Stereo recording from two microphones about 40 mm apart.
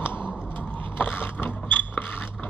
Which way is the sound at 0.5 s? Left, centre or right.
Left.